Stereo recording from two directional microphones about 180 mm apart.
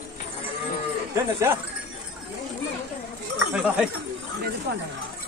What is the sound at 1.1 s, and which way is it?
Speech, 15° right (ahead or behind).